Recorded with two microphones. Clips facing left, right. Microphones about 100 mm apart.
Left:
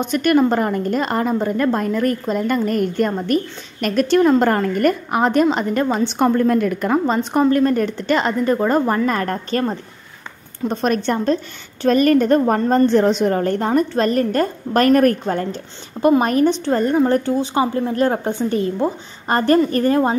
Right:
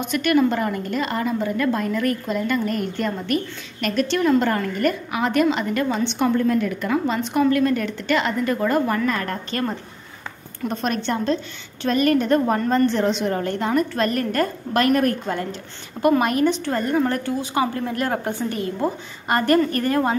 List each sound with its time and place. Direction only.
0.0 s a woman's voice: 40° left (ahead or behind)
10.9 s a woman's voice: 45° left (ahead or behind)
16.0 s a woman's voice: 30° left (ahead or behind)